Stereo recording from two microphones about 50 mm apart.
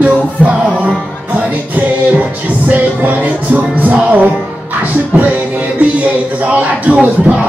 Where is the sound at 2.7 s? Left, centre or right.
Right.